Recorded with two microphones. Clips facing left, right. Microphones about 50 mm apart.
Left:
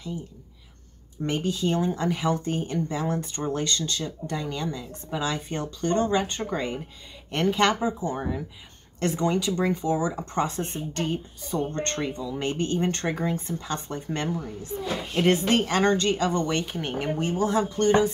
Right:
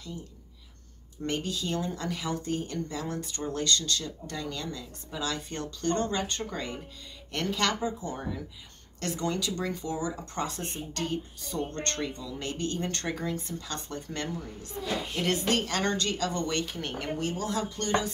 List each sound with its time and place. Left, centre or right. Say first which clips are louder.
1.4 s speech: left 7 dB; left
12.4 s speech: left 6 dB; left